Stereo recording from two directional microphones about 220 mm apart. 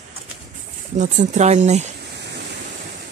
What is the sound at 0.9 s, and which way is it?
Speech, 35° right (ahead or behind).